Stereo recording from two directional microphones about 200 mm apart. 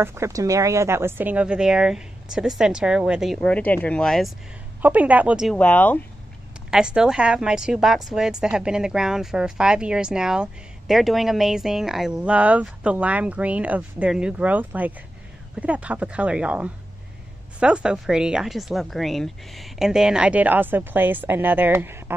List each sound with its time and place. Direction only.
0.0 s a woman's voice: 15° right (ahead or behind)
3.3 s speech: 5° left (ahead or behind)
4.8 s a woman's voice: 10° right (ahead or behind); by 5.9 s 5° left (ahead or behind)
6.7 s a woman's voice: 5° right (ahead or behind)